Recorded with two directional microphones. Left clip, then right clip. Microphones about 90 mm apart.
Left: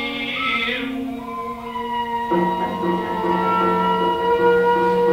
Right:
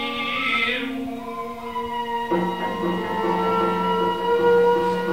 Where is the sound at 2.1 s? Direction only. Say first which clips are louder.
Left 4 dB; 30° right (ahead or behind).